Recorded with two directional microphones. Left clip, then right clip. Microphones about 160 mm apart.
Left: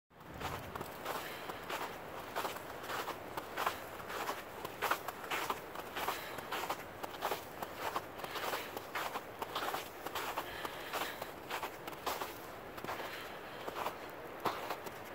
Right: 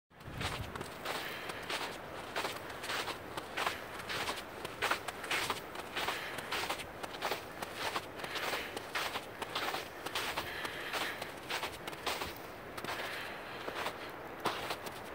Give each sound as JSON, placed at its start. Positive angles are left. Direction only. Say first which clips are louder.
{"t": 2.9, "sound": "walk", "louder": "right 2 dB", "side_deg": -5}
{"t": 4.3, "sound": "vehicle", "louder": "right 2 dB", "side_deg": -5}
{"t": 6.7, "sound": "walk", "louder": "right 2 dB", "side_deg": -5}
{"t": 14.4, "sound": "a sound", "louder": "right 1 dB", "side_deg": 10}